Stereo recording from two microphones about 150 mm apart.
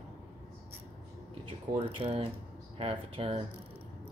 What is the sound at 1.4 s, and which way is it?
Speech, 40° right (ahead or behind).